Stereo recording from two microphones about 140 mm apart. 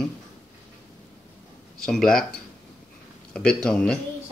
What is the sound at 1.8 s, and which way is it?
Speech, 5° left (ahead or behind).